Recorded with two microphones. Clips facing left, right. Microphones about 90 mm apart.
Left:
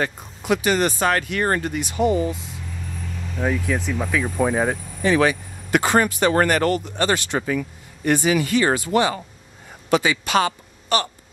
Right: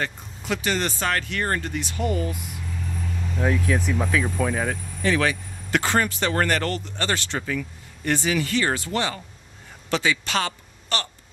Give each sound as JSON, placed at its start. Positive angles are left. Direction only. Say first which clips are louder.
{"t": 0.0, "sound": "speech", "louder": "left 4 dB", "side_deg": 15}
{"t": 3.2, "sound": "speech", "louder": "left 1 dB", "side_deg": 0}
{"t": 4.4, "sound": "speech", "louder": "left 4 dB", "side_deg": 20}